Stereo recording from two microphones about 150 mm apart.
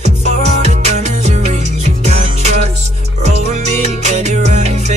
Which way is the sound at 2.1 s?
50° right (ahead or behind).